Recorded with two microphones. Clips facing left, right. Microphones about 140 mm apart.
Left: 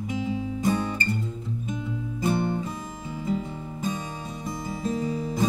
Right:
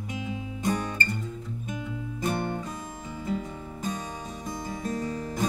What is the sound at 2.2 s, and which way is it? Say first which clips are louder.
Music: left 4 dB; centre (ahead or behind).